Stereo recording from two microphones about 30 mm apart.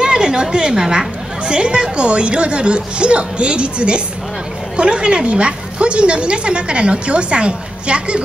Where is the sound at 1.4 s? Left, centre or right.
Right.